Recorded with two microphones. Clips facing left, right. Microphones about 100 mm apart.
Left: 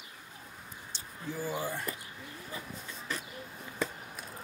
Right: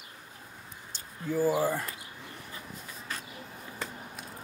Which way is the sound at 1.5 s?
45° right (ahead or behind).